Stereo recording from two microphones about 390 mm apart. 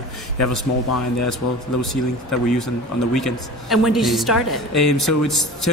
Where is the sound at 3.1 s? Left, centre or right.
Centre.